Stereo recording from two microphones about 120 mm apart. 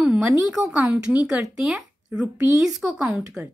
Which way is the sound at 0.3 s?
5° right (ahead or behind).